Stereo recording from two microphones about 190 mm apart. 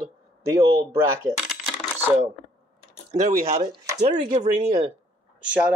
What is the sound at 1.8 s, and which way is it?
Coin, 5° left (ahead or behind).